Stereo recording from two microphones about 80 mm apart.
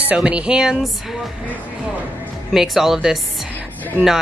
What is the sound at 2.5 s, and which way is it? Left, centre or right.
Speech, centre.